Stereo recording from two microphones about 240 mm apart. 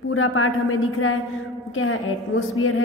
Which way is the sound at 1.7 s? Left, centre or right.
Left.